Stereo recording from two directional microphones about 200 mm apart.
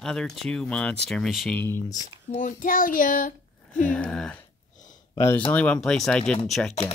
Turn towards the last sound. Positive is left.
turn(degrees=0)  # may be behind; listen again after turning